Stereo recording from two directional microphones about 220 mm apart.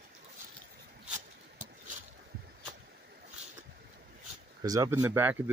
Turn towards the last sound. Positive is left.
turn(degrees=-10)  # may be behind; listen again after turning